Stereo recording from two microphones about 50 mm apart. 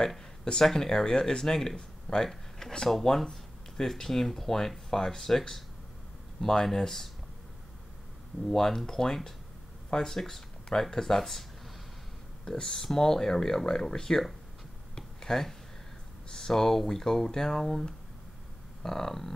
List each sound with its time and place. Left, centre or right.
0.0 s speech: centre
8.5 s speech: centre
12.4 s speech: centre
15.0 s a sound: centre
16.3 s speech: centre